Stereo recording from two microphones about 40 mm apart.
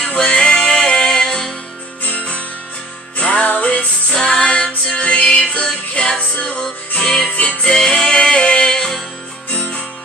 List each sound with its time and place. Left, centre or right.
0.1 s music: left
2.0 s music: left
9.5 s music: left